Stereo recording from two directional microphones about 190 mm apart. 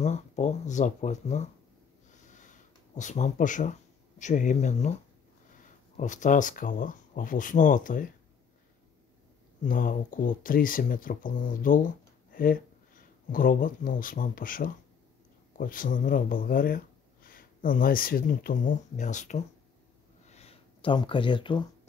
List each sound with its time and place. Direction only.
0.0 s speech: 40° left (ahead or behind)
2.3 s a sound: 40° left (ahead or behind)
4.2 s speech: 40° left (ahead or behind)
5.9 s speech: 40° left (ahead or behind)
9.6 s speech: 45° left (ahead or behind)
20.2 s a sound: 35° left (ahead or behind)